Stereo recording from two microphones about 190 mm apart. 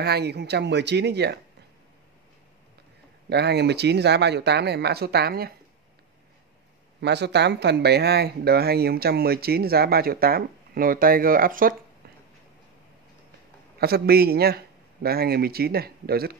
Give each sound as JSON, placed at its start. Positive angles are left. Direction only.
{"t": 0.0, "sound": "speech", "side_deg": -60}
{"t": 3.3, "sound": "speech", "side_deg": -60}
{"t": 7.0, "sound": "speech", "side_deg": -65}
{"t": 13.7, "sound": "speech", "side_deg": -55}